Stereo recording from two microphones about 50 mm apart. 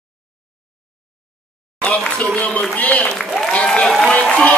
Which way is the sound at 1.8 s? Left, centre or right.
Left.